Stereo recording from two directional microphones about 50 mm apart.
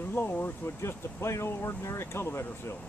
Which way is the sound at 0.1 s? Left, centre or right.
Left.